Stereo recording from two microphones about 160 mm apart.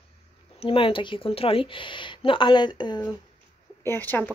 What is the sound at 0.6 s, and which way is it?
Speech, 35° left (ahead or behind).